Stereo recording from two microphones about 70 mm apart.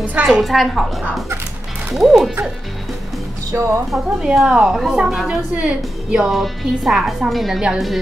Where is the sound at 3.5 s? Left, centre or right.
Right.